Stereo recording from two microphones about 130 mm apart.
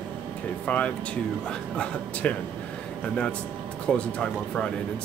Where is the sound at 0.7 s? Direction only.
10° left (ahead or behind).